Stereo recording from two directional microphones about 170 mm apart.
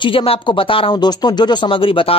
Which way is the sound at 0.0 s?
30° left (ahead or behind).